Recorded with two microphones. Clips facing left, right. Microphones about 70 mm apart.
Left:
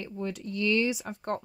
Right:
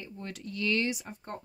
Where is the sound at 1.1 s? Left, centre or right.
Left.